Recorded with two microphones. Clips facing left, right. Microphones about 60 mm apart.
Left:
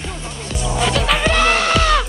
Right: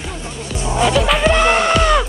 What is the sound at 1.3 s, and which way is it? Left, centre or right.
Music, centre.